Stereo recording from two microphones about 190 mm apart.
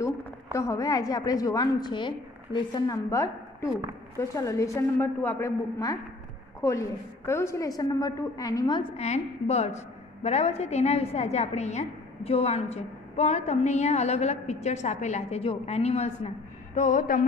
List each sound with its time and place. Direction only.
0.0 s a woman's voice: 15° left (ahead or behind); by 17.2 s 45° left (ahead or behind)